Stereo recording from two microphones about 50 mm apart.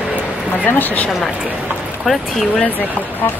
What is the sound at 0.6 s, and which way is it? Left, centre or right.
Speech, left.